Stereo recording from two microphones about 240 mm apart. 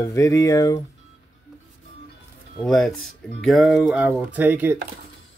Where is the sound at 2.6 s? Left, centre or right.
Centre.